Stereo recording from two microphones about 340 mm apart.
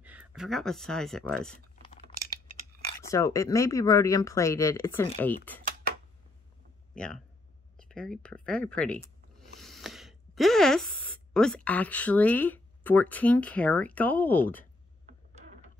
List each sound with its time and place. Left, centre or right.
0.0 s speech: centre
1.8 s a sound: centre
3.0 s speech: centre
7.0 s speech: centre
7.7 s a sound: centre
11.3 s speech: centre